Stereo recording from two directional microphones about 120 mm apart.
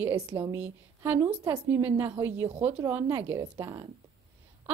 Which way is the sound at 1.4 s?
30° right (ahead or behind).